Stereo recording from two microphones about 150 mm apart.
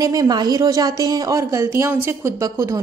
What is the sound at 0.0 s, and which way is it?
A woman's voice, 25° right (ahead or behind).